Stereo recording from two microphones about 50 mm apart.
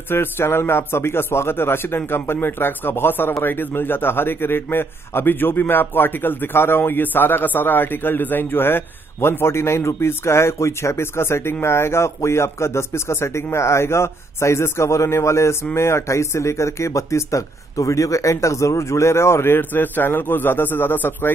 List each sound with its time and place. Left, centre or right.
0.1 s a man's voice: left